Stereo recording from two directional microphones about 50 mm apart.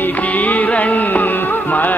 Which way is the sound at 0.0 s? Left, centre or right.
Left.